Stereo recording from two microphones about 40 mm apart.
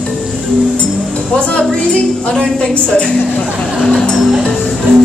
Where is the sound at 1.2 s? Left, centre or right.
Left.